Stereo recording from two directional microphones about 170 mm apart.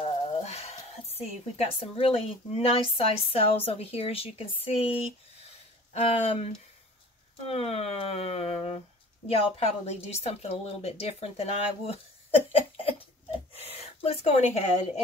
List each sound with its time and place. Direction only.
0.0 s speech: 35° left (ahead or behind)
5.9 s speech: 35° left (ahead or behind)